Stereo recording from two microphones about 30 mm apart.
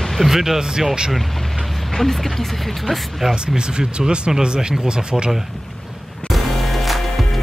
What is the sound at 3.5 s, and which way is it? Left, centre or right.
Speech, right.